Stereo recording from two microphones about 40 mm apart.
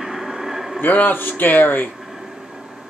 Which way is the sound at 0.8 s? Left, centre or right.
Left.